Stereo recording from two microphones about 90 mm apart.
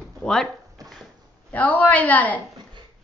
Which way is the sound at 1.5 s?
15° left (ahead or behind).